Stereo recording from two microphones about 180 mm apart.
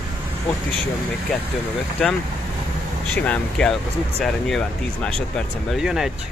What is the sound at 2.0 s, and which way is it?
Speech, centre (ahead or behind).